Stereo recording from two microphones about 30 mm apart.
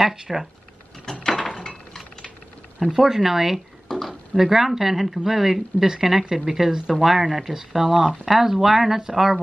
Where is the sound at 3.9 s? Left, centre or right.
Centre.